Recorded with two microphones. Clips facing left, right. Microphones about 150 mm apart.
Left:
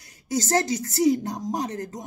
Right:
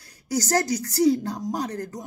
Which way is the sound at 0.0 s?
20° left (ahead or behind).